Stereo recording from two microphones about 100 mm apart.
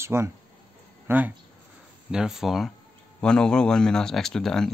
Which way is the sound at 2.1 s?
5° right (ahead or behind).